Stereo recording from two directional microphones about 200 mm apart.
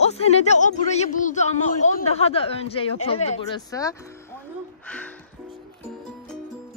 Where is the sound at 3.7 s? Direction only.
15° left (ahead or behind).